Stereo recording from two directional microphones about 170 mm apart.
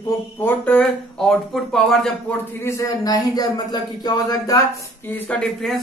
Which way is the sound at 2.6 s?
15° left (ahead or behind).